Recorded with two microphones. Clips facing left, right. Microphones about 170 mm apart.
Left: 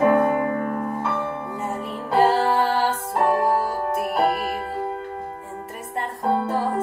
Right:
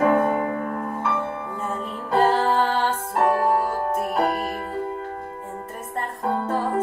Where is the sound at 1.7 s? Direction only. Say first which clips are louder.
Even; 80° left.